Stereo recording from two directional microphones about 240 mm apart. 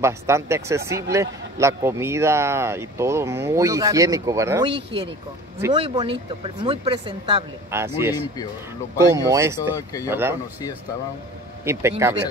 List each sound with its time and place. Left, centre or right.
0.0 s a man's voice: centre
7.7 s a man's voice: centre
11.6 s speech: centre